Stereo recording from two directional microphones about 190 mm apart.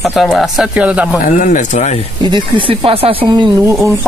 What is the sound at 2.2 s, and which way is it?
Speech, 25° right (ahead or behind).